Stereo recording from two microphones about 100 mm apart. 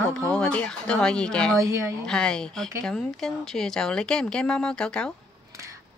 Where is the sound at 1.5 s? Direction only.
30° right (ahead or behind).